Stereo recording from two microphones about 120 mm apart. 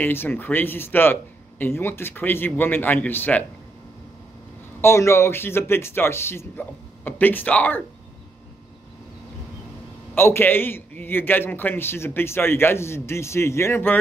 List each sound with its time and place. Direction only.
0.0 s speech: 15° left (ahead or behind)
4.8 s a man's voice: 20° left (ahead or behind)
10.1 s a man's voice: 20° left (ahead or behind)